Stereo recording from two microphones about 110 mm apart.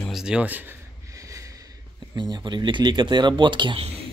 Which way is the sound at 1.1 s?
30° right (ahead or behind).